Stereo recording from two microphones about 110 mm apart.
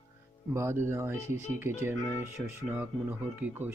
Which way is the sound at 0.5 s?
25° right (ahead or behind).